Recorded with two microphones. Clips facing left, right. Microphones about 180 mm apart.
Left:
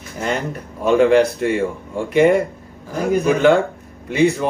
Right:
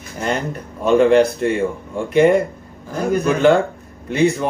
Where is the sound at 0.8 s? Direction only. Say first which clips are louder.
Right 1 dB; 5° left (ahead or behind).